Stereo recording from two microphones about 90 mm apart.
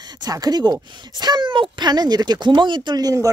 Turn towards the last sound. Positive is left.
turn(degrees=-40)  # may be behind; listen again after turning